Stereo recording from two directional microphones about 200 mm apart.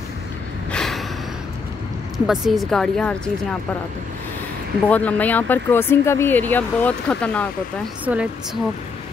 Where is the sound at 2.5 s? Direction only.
Centre (ahead or behind).